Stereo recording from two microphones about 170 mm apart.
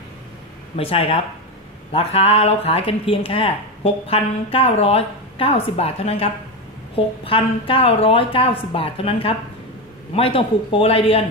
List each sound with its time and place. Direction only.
0.7 s speech: 35° left (ahead or behind)